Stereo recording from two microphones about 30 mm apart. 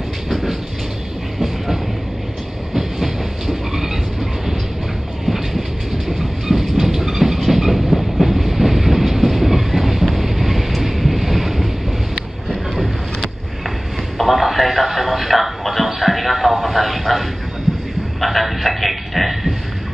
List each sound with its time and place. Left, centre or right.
0.3 s train: centre
2.7 s train: centre
5.2 s train: centre
10.1 s wind noise: centre
12.4 s boat: centre
14.1 s a sound: centre